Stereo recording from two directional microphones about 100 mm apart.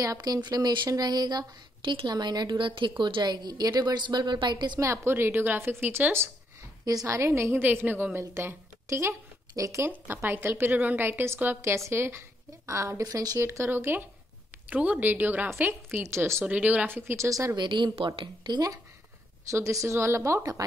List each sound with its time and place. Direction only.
0.0 s a woman's voice: 35° right (ahead or behind)
4.7 s a woman's voice: 25° right (ahead or behind)
16.4 s a woman's voice: 15° right (ahead or behind); by 17.5 s 30° right (ahead or behind)
17.6 s a woman's voice: 50° right (ahead or behind)
17.9 s a woman's voice: 60° right (ahead or behind)
19.5 s a woman's voice: 35° right (ahead or behind)